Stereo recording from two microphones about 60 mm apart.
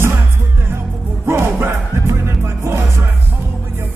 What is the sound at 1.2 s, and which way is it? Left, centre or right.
Music, right.